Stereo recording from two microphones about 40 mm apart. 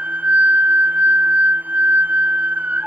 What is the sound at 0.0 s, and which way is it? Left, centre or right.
Music, right.